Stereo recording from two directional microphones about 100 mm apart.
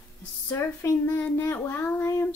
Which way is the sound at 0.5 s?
25° left (ahead or behind).